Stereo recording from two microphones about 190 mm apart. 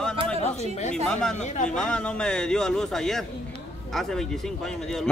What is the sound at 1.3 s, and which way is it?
Speech, 40° left (ahead or behind).